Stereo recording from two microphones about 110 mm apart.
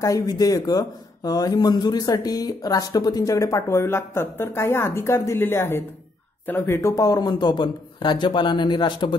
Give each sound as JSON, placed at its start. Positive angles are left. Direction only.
{"t": 0.0, "sound": "a man's voice", "side_deg": 35}